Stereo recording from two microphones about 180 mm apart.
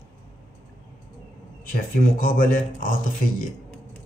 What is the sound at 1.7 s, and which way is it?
Speech, 50° left (ahead or behind).